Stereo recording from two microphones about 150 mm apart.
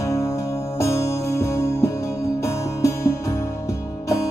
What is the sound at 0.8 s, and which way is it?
Music, 20° left (ahead or behind).